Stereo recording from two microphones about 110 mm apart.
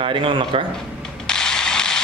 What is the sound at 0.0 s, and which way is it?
Speech, 50° right (ahead or behind).